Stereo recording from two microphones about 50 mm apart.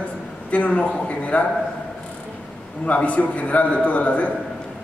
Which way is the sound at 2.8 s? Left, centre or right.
Left.